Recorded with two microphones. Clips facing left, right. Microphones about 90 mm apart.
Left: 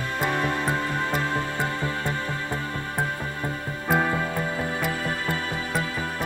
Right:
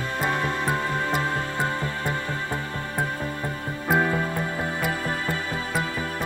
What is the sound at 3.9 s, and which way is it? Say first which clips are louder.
Music: right 1 dB; 5° right (ahead or behind).